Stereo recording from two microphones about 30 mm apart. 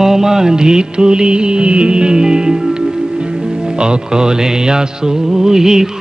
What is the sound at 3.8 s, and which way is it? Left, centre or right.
Music, right.